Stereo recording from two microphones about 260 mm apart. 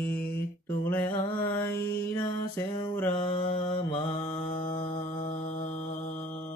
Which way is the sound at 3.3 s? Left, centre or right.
Centre.